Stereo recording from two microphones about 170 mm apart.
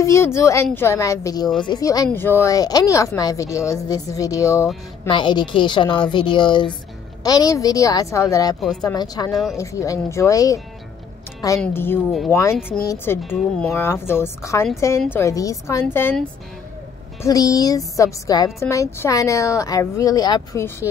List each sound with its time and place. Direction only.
0.0 s a woman's voice: 15° left (ahead or behind)
9.3 s speech: centre (ahead or behind)
9.6 s a woman's voice: 20° left (ahead or behind)
11.6 s a woman's voice: 10° left (ahead or behind)
17.2 s a woman's voice: 20° left (ahead or behind)